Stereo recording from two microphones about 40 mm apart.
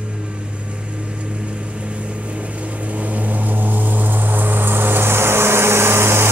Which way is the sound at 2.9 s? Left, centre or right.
Right.